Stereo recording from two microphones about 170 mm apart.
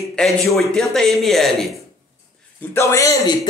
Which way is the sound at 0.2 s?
5° left (ahead or behind).